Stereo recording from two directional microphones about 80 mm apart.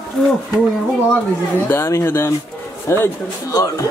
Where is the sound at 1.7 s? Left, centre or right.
Left.